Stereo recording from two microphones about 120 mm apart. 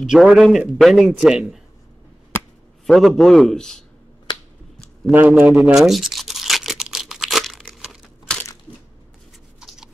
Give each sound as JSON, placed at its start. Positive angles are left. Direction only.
{"t": 0.0, "sound": "a man's voice", "side_deg": -5}
{"t": 2.9, "sound": "a man's voice", "side_deg": 0}
{"t": 5.1, "sound": "a man's voice", "side_deg": -15}
{"t": 5.7, "sound": "tearing", "side_deg": 0}
{"t": 9.6, "sound": "a sound", "side_deg": -5}